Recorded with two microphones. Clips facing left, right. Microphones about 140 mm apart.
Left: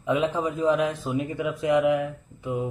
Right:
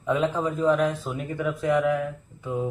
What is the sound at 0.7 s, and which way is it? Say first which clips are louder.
Speech: even; 15° left (ahead or behind).